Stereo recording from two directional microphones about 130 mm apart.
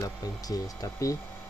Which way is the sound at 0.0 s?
25° left (ahead or behind).